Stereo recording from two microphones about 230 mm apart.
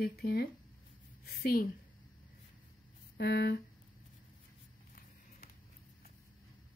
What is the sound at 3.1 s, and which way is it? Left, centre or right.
Speech, left.